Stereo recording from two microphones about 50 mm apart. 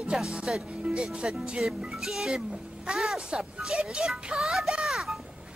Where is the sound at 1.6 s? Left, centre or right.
Centre.